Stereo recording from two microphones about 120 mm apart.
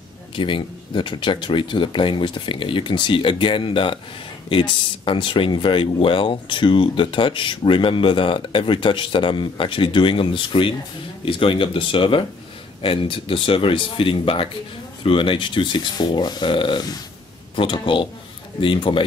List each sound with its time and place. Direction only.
0.4 s speech: 40° left (ahead or behind)